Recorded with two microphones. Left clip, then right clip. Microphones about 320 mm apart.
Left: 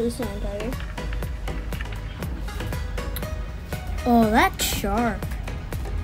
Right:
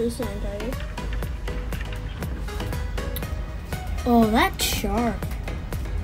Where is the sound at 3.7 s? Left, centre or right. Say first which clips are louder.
Left 1 dB; centre.